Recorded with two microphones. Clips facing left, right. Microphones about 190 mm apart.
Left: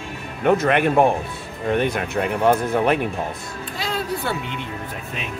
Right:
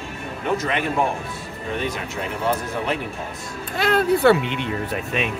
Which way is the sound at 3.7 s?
60° right (ahead or behind).